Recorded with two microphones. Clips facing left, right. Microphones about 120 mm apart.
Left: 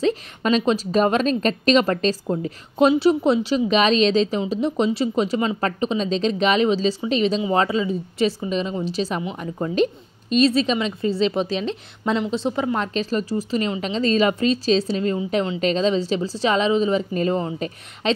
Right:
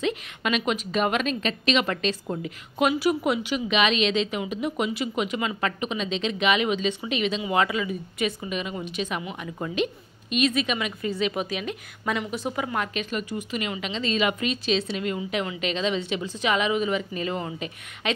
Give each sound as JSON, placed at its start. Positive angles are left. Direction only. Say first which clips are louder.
{"t": 0.0, "sound": "a woman's voice", "louder": "left 6 dB", "side_deg": 35}